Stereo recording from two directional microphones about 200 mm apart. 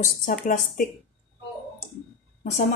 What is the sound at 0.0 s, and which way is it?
Speech, 40° left (ahead or behind).